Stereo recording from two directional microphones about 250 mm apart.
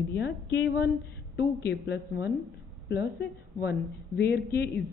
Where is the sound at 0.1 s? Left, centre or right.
Left.